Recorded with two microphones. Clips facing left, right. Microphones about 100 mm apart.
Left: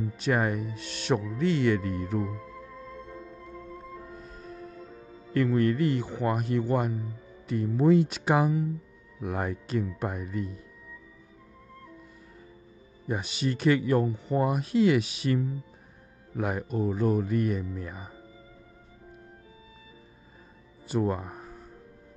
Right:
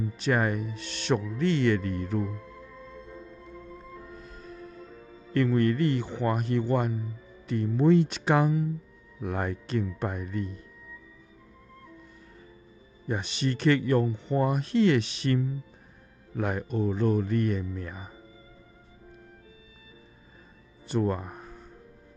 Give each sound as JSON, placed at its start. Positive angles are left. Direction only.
{"t": 0.0, "sound": "speech", "side_deg": 0}
{"t": 3.7, "sound": "music", "side_deg": 0}
{"t": 5.3, "sound": "speech", "side_deg": 5}
{"t": 13.0, "sound": "speech", "side_deg": 5}
{"t": 20.8, "sound": "music", "side_deg": 5}